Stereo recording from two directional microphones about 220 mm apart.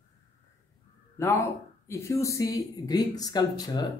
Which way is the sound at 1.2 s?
10° left (ahead or behind).